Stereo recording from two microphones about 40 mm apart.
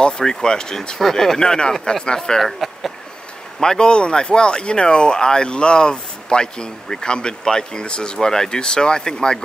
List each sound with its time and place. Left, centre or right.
0.0 s speech: centre
3.6 s speech: centre